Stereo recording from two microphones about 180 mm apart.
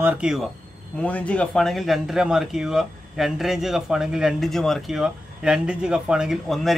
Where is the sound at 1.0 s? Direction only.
5° left (ahead or behind).